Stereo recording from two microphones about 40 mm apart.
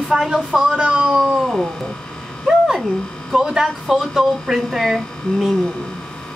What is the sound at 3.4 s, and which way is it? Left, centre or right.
A woman's voice, centre.